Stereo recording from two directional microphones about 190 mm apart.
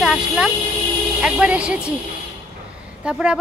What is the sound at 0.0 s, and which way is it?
Vehicle, 5° right (ahead or behind).